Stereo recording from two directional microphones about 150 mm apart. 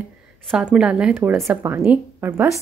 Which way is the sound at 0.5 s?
5° right (ahead or behind).